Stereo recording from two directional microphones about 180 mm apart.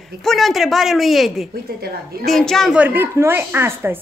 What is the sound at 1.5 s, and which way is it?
Speech, 55° right (ahead or behind).